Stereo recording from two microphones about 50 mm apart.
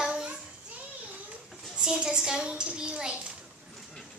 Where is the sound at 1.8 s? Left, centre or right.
Centre.